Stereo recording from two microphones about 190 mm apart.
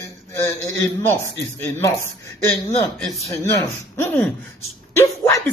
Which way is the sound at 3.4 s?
15° left (ahead or behind).